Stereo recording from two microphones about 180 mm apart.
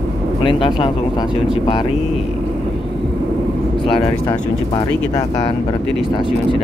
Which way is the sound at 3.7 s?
30° left (ahead or behind).